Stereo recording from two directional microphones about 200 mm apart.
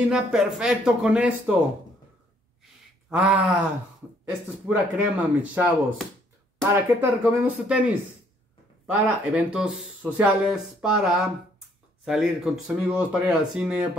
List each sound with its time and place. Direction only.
0.1 s speech: 5° right (ahead or behind)
3.1 s speech: 5° right (ahead or behind)
4.6 s speech: 5° right (ahead or behind)